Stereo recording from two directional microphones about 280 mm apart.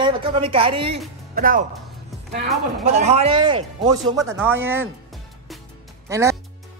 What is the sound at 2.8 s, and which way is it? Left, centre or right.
Speech, right.